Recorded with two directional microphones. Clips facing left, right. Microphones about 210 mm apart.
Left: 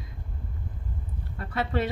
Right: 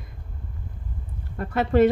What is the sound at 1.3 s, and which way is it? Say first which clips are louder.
Speech: right 7 dB; 50° right (ahead or behind).